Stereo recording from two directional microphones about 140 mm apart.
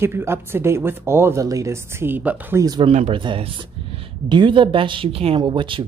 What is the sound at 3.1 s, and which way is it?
Speech, 40° right (ahead or behind).